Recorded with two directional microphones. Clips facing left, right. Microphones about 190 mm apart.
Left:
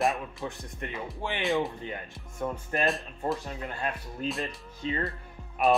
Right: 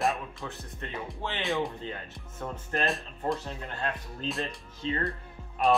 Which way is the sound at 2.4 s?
15° left (ahead or behind).